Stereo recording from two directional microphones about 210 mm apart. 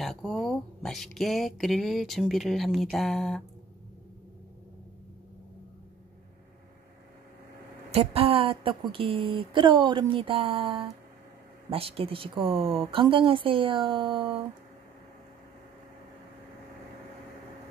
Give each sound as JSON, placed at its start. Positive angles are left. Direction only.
{"t": 0.0, "sound": "speech", "side_deg": 0}
{"t": 7.9, "sound": "speech", "side_deg": -30}